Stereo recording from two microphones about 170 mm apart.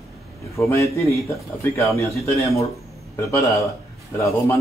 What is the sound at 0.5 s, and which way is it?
A man's voice, 15° left (ahead or behind).